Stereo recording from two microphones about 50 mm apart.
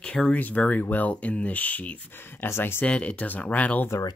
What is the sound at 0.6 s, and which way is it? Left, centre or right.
Speech, left.